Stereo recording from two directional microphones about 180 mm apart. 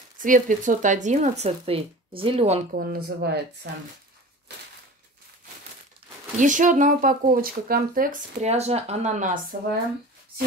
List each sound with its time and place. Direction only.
0.2 s speech: 45° right (ahead or behind)
2.7 s speech: 55° right (ahead or behind)
6.3 s speech: 45° right (ahead or behind)